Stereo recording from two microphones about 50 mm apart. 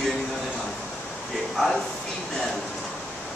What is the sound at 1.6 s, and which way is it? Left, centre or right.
Speech, centre.